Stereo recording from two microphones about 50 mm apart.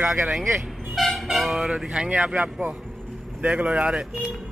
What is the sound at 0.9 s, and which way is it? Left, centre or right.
Speech, centre.